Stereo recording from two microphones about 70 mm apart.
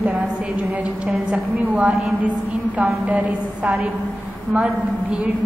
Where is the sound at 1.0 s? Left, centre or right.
Centre.